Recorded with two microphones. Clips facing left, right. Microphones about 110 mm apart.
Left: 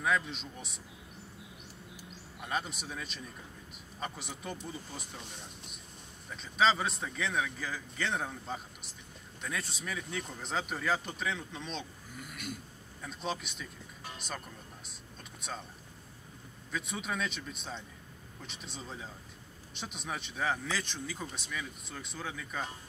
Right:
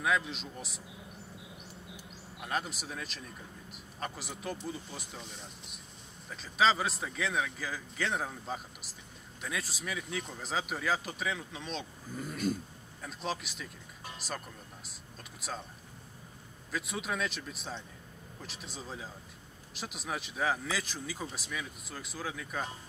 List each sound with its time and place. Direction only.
0.0 s speech: centre (ahead or behind)
2.4 s speech: centre (ahead or behind)
6.3 s speech: centre (ahead or behind)
12.2 s a sound: 35° right (ahead or behind)
13.0 s speech: centre (ahead or behind)
15.4 s speech: centre (ahead or behind)
16.7 s speech: centre (ahead or behind)